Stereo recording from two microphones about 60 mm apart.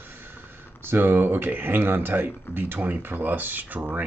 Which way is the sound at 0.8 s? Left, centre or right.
Right.